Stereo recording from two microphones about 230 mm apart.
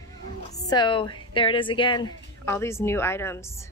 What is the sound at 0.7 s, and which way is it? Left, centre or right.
A woman's voice, centre.